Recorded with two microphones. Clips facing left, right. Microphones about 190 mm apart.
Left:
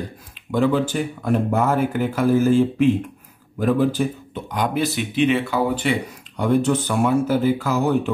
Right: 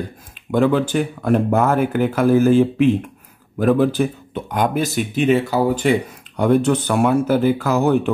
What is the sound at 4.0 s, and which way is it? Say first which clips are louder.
Speech: right 3 dB; 65° right (ahead or behind).